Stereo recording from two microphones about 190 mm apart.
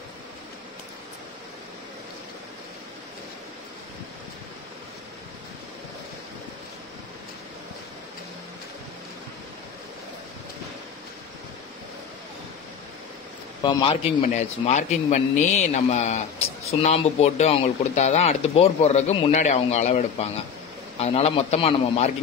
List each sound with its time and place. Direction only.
13.6 s a man's voice: 25° left (ahead or behind)
14.3 s a man's voice: 40° left (ahead or behind)